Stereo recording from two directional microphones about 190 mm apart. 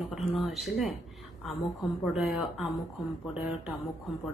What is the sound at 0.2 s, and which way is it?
Speech, 30° left (ahead or behind).